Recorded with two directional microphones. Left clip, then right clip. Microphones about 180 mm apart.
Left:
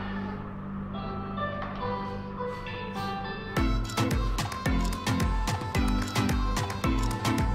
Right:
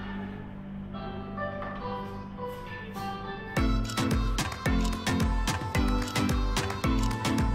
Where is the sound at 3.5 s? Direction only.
Centre (ahead or behind).